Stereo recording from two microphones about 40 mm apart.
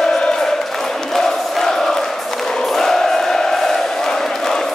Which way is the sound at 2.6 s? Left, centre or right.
Centre.